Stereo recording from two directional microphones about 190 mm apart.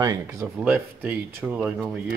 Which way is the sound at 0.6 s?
10° right (ahead or behind).